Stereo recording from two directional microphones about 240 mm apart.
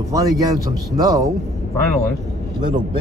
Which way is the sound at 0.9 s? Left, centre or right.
Centre.